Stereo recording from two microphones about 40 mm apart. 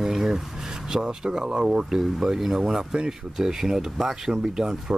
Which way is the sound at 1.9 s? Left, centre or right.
Centre.